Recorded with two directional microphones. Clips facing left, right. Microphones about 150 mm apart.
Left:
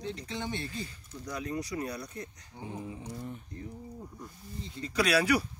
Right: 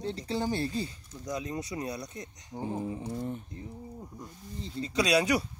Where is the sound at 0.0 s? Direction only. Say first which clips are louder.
Right 5 dB; 35° right (ahead or behind).